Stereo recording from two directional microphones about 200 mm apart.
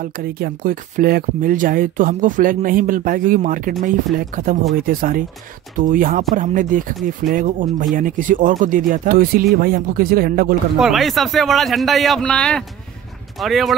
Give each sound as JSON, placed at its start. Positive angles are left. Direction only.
{"t": 0.0, "sound": "speech", "side_deg": -50}
{"t": 10.8, "sound": "a man's voice", "side_deg": 0}